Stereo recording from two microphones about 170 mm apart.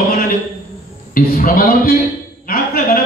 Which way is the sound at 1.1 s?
55° left (ahead or behind).